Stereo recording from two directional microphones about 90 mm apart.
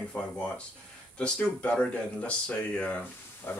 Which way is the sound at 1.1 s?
10° left (ahead or behind).